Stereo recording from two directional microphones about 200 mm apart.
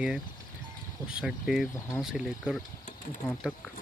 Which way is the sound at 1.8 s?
15° left (ahead or behind).